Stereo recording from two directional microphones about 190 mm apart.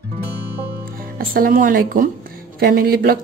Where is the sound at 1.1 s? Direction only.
50° right (ahead or behind).